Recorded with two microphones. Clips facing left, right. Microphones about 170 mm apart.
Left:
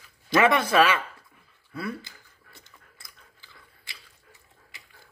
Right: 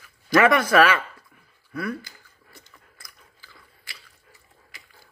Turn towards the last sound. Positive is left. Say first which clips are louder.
# right 2 dB
turn(degrees=20)  # may be behind; listen again after turning